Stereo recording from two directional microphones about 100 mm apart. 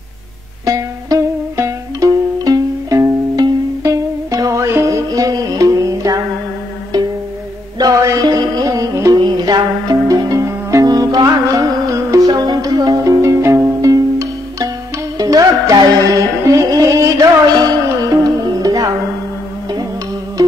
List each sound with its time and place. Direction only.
0.7 s music: 35° right (ahead or behind)
7.8 s music: 35° right (ahead or behind)